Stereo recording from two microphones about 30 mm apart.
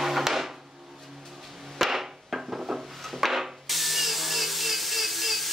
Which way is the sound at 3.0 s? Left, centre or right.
Centre.